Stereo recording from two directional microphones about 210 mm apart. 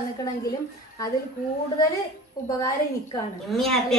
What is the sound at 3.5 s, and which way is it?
Speech, centre (ahead or behind).